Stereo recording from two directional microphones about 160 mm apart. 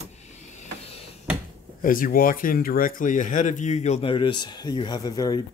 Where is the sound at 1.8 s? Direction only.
60° left (ahead or behind); by 5.4 s 25° left (ahead or behind).